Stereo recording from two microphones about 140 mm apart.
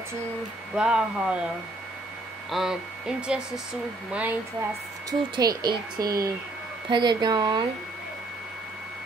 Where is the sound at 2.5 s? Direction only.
5° right (ahead or behind).